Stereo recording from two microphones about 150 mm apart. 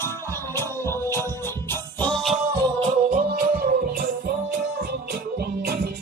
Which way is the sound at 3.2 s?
90° right.